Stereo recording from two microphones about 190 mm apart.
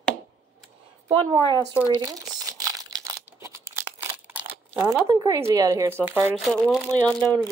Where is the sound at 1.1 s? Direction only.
25° right (ahead or behind).